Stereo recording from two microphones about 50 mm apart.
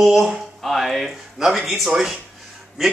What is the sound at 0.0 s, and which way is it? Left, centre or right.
Speech, centre.